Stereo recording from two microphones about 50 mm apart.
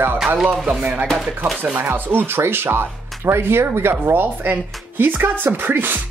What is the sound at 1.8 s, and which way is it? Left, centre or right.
A woman's voice, right.